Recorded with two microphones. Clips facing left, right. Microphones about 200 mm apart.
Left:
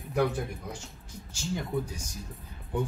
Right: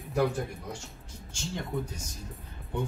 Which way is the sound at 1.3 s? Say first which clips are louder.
Left 3 dB; 5° left (ahead or behind).